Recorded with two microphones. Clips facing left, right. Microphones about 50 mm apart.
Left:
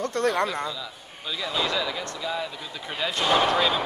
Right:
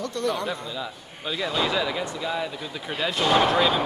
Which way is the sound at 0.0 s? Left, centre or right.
Left.